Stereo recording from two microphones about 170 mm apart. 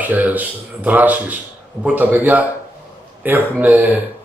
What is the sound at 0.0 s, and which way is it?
A man's voice, 10° right (ahead or behind).